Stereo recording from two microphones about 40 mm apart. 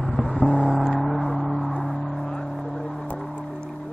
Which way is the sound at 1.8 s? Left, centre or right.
Centre.